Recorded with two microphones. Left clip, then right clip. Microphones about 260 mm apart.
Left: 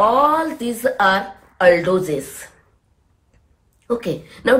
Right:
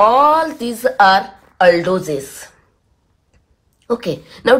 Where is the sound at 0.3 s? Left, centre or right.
Centre.